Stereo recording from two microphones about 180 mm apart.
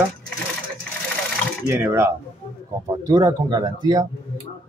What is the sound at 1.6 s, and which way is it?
Speech, 15° right (ahead or behind).